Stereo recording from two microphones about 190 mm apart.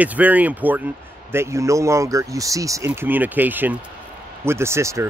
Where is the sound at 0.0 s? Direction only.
10° right (ahead or behind).